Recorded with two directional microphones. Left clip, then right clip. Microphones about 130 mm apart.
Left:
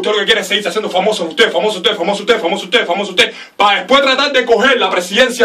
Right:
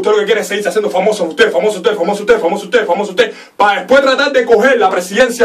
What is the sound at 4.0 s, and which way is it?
Speech, centre (ahead or behind).